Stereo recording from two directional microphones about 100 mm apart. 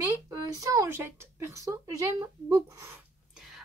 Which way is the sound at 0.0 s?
35° right (ahead or behind).